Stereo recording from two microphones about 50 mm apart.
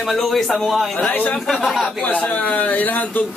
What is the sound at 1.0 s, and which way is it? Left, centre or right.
Speech, left.